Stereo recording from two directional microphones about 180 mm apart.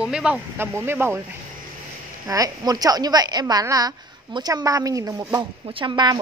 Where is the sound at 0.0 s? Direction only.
5° right (ahead or behind).